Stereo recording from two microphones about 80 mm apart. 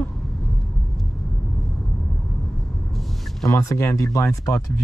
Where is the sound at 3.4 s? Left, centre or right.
Left.